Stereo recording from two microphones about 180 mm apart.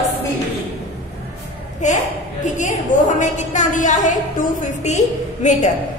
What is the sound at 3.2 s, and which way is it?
A woman's voice, 45° left (ahead or behind).